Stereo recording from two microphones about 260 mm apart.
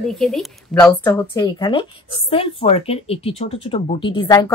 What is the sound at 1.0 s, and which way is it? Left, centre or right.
Speech, centre.